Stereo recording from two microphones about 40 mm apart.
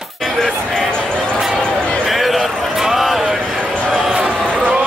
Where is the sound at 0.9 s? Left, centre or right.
Left.